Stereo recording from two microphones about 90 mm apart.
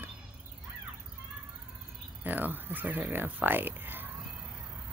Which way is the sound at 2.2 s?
20° right (ahead or behind).